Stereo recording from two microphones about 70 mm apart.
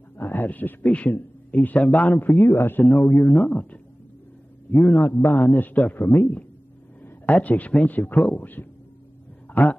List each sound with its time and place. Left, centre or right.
0.2 s speech: left
1.8 s speech: centre
2.0 s a man's voice: left
2.8 s a man's voice: left
3.3 s a man's voice: centre; by 6.2 s left
7.2 s a man's voice: left